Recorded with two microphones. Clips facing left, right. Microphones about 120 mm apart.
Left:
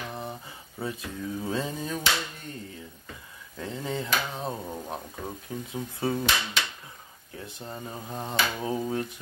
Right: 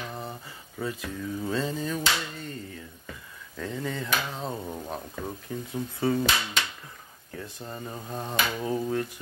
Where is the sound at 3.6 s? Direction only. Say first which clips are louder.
Even; 20° left (ahead or behind).